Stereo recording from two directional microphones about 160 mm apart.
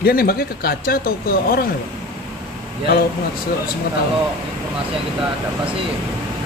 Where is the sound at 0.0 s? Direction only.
70° left (ahead or behind).